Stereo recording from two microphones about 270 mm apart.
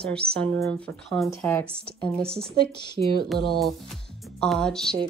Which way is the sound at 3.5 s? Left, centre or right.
Centre.